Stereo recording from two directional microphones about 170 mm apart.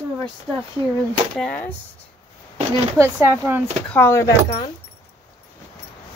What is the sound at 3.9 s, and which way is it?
Speech, 15° left (ahead or behind).